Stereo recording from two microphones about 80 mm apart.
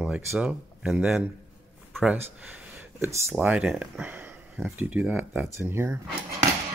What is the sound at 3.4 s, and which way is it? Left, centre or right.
Speech, centre.